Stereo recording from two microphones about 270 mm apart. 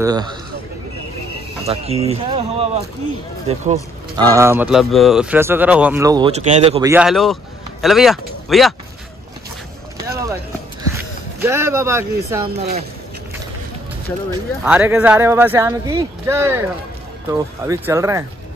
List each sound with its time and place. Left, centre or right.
0.0 s speech: centre
1.7 s speech: right
4.3 s speech: centre
6.9 s speech: centre
10.0 s clip-clop: centre
10.8 s speech: centre
14.6 s speech: centre